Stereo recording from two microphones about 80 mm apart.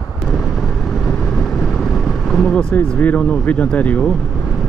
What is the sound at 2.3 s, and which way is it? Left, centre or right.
Speech, centre.